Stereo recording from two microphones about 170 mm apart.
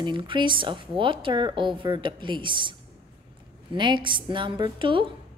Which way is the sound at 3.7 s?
30° right (ahead or behind).